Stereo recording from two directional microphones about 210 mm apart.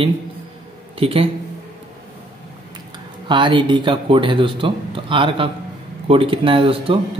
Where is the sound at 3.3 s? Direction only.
25° right (ahead or behind).